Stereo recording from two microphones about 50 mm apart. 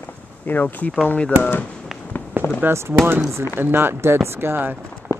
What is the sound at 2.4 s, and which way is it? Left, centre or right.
Fireworks, right.